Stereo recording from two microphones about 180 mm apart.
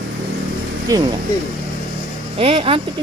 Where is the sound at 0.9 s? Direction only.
20° right (ahead or behind).